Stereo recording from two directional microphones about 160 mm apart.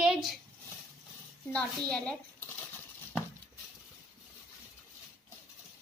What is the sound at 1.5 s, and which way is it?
A child's voice, 5° left (ahead or behind).